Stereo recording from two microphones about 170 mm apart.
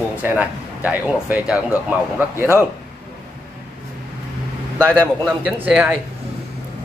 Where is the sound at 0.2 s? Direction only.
10° right (ahead or behind).